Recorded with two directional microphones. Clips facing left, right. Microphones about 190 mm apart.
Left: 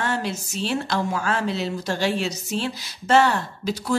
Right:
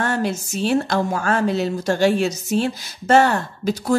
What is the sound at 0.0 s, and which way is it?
A woman's voice, 50° right (ahead or behind).